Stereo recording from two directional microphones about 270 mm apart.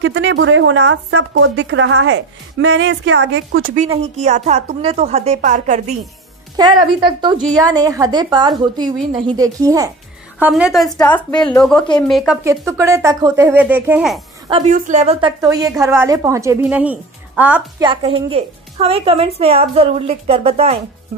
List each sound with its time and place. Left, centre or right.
0.0 s a woman's voice: right
6.5 s a woman's voice: centre
10.4 s a woman's voice: centre
12.4 s a woman's voice: centre
14.5 s a woman's voice: right; by 17.8 s centre
17.8 s a woman's voice: right